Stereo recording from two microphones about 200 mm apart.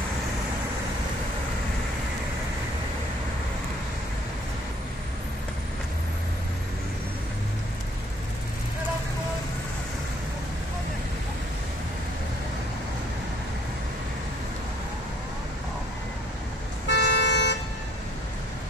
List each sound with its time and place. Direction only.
16.8 s vehicle: 60° left (ahead or behind)